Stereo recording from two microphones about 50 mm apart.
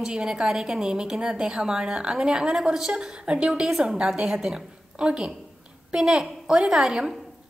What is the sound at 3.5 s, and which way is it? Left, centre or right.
A woman's voice, centre.